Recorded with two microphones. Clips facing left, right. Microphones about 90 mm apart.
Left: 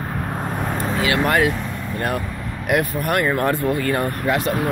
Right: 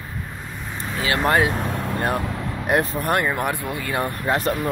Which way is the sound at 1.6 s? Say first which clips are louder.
Right 3 dB; 65° right (ahead or behind).